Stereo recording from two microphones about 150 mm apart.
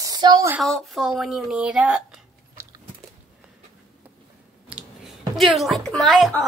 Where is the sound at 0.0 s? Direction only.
25° right (ahead or behind).